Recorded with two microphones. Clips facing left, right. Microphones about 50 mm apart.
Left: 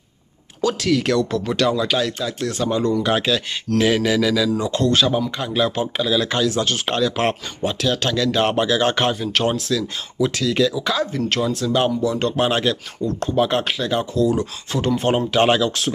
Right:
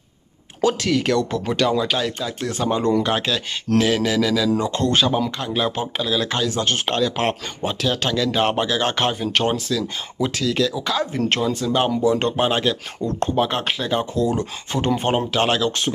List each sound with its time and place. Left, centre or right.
0.7 s speech: centre
3.0 s speech: centre
11.1 s speech: right
11.4 s speech: centre
12.0 s speech: right
12.4 s speech: centre
15.3 s speech: centre